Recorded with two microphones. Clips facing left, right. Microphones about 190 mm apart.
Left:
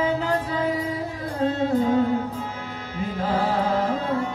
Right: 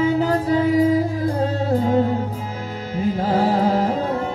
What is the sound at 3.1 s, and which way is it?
Music, 40° right (ahead or behind).